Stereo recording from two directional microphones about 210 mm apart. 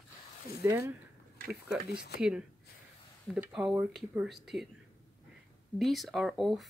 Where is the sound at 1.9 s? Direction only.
50° left (ahead or behind).